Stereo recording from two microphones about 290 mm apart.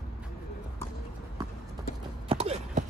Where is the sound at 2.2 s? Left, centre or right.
Right.